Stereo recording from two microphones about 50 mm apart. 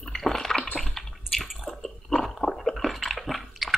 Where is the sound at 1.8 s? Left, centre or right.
Centre.